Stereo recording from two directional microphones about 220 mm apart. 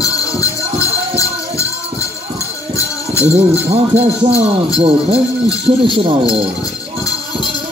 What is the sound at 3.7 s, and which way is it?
Music, 30° right (ahead or behind).